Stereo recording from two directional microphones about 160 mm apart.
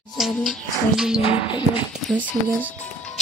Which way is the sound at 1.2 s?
35° left (ahead or behind).